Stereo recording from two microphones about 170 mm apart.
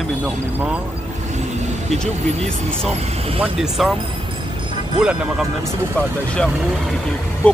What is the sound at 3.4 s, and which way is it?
Speech, centre (ahead or behind).